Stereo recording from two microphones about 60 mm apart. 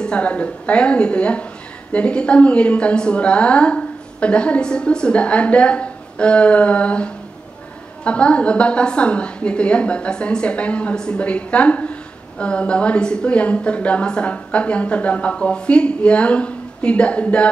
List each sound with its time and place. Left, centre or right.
0.0 s a woman's voice: centre